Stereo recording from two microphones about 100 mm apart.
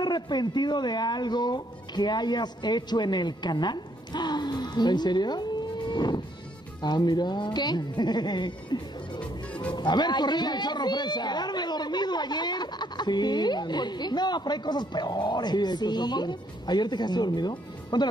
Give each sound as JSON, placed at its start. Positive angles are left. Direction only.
{"t": 0.0, "sound": "a woman's voice", "side_deg": 45}
{"t": 9.5, "sound": "music", "side_deg": 15}
{"t": 9.8, "sound": "a woman's voice", "side_deg": 45}